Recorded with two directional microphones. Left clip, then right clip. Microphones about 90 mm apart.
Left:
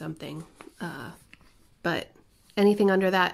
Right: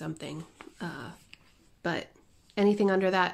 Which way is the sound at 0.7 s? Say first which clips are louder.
Left 2 dB; 30° left (ahead or behind).